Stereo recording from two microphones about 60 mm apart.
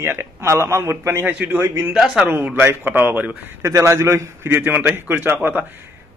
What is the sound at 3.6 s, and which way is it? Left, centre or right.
A man's voice, right.